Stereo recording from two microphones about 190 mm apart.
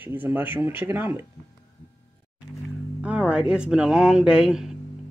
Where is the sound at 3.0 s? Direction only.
5° right (ahead or behind).